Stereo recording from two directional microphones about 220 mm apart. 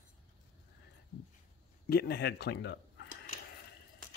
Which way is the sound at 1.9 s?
45° left (ahead or behind).